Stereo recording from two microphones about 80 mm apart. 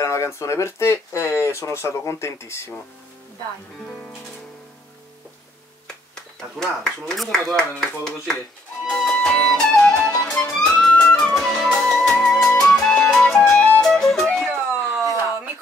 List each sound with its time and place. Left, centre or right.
0.0 s speech: left
6.6 s speech: centre
8.9 s music: centre